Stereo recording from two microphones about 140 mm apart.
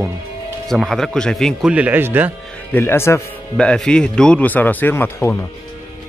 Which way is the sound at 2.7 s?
15° left (ahead or behind).